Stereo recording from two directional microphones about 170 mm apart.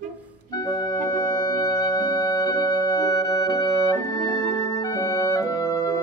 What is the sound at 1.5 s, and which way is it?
Music, 20° left (ahead or behind).